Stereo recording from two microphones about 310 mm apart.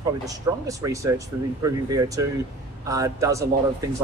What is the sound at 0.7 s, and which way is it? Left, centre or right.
Speech, centre.